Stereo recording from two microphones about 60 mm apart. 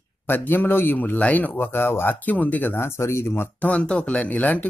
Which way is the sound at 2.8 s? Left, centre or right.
Left.